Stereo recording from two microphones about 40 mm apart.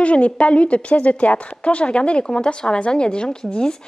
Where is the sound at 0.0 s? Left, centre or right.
Left.